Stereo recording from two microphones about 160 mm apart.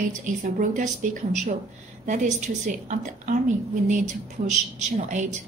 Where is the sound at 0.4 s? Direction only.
50° right (ahead or behind).